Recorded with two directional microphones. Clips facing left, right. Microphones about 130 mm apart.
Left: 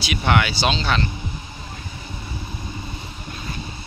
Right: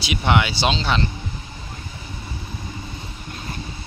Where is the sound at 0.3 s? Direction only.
25° right (ahead or behind).